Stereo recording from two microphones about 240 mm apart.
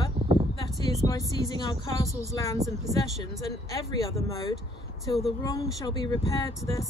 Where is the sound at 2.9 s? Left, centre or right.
Right.